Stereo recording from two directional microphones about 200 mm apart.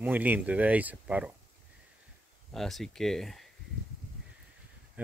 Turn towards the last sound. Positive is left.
turn(degrees=-5)  # may be behind; listen again after turning